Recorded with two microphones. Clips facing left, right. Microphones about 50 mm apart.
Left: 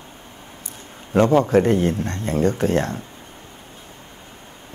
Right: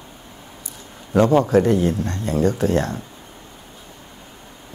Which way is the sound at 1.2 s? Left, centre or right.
Left.